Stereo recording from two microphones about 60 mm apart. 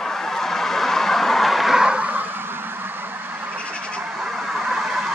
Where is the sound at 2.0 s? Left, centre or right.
Right.